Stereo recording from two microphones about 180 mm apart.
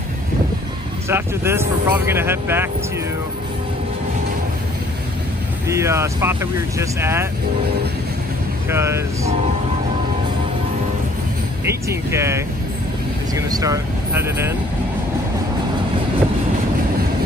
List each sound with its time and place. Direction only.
1.0 s speech: 15° right (ahead or behind)
5.7 s speech: 15° right (ahead or behind)
8.6 s speech: 15° right (ahead or behind)
11.6 s speech: 15° right (ahead or behind)